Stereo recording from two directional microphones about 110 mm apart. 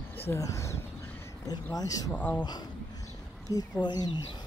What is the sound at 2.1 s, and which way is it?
Speech, 15° left (ahead or behind).